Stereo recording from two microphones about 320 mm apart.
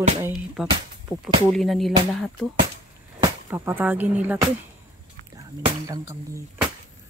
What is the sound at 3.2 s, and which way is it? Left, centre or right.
Speech, centre.